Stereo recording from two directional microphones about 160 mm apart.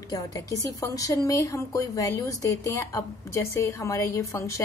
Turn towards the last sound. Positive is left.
turn(degrees=20)  # may be behind; listen again after turning